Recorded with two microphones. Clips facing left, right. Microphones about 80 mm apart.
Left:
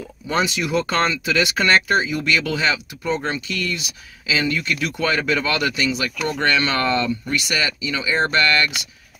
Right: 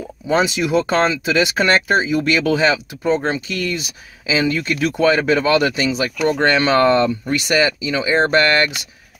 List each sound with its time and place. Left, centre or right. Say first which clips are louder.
0.3 s speech: right 4 dB; right